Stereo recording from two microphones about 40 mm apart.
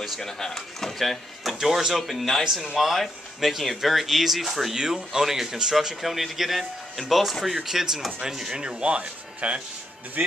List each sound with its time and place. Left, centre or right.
0.0 s speech: centre
1.6 s speech: centre
4.7 s speech: centre
7.5 s speech: centre
8.6 s speech: right